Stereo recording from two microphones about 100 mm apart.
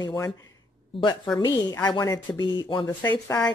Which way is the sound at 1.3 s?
40° left (ahead or behind).